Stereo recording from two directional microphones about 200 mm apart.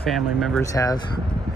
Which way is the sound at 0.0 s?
Centre (ahead or behind).